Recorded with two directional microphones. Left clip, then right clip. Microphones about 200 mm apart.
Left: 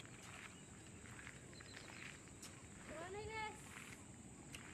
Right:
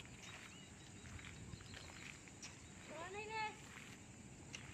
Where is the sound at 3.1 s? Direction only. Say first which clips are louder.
Right 3 dB; 60° left (ahead or behind).